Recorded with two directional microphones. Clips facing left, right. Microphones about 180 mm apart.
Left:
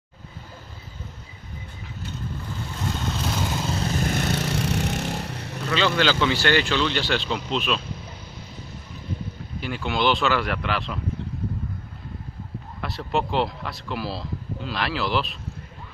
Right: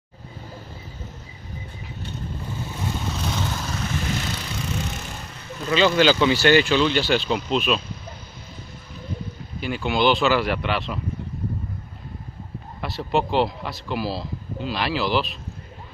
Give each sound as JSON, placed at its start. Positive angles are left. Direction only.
{"t": 2.7, "sound": "vehicle", "side_deg": -5}
{"t": 3.3, "sound": "vehicle", "side_deg": 10}
{"t": 3.6, "sound": "vehicle", "side_deg": 30}
{"t": 4.0, "sound": "vehicle", "side_deg": 55}
{"t": 5.7, "sound": "speech", "side_deg": -15}
{"t": 9.6, "sound": "speech", "side_deg": -5}
{"t": 12.8, "sound": "speech", "side_deg": 0}